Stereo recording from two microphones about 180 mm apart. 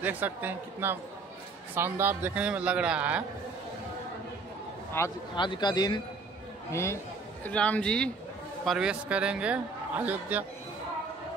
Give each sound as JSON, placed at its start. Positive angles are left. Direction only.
{"t": 0.0, "sound": "a man's voice", "side_deg": -10}
{"t": 4.9, "sound": "a man's voice", "side_deg": 20}